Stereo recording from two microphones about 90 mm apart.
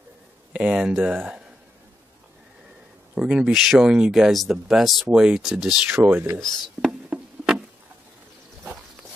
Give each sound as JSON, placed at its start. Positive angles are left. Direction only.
{"t": 0.5, "sound": "speech", "side_deg": -10}
{"t": 3.2, "sound": "speech", "side_deg": -10}
{"t": 5.9, "sound": "speech", "side_deg": -25}
{"t": 6.9, "sound": "insect", "side_deg": -10}